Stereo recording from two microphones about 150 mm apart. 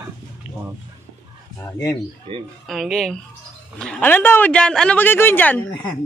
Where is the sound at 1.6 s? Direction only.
25° left (ahead or behind).